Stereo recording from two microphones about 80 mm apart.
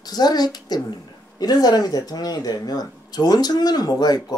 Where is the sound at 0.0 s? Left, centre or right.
Left.